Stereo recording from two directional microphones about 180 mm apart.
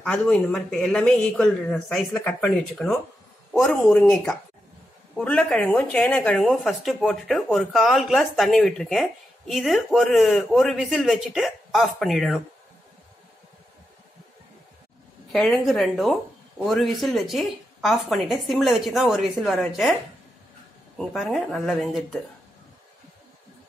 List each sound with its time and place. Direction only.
0.0 s speech: 5° left (ahead or behind)
15.3 s speech: centre (ahead or behind)
21.0 s speech: centre (ahead or behind)